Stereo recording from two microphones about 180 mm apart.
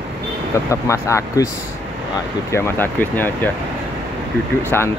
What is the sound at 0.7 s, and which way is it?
Speech, 15° left (ahead or behind).